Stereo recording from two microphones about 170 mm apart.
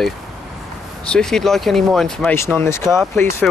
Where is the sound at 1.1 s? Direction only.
5° left (ahead or behind).